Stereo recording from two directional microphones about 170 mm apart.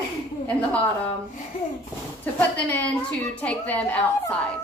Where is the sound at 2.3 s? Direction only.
10° left (ahead or behind).